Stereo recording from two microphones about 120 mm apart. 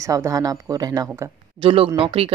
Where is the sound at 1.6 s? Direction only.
50° right (ahead or behind).